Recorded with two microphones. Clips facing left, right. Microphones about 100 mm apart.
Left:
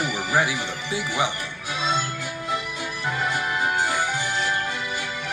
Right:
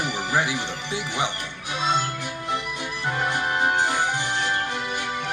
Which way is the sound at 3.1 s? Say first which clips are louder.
Right 1 dB; 45° right (ahead or behind).